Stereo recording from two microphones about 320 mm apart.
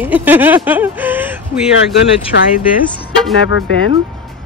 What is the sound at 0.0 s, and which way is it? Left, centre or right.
Speech, centre.